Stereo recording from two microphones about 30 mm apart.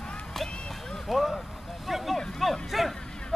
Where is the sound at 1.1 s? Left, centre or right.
Centre.